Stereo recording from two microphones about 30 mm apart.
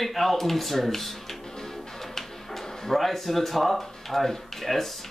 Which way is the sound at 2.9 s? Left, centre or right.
Centre.